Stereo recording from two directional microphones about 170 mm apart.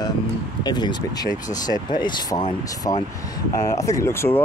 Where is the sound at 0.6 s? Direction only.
25° left (ahead or behind).